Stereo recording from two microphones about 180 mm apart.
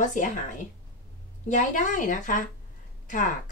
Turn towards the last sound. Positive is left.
turn(degrees=45)  # may be behind; listen again after turning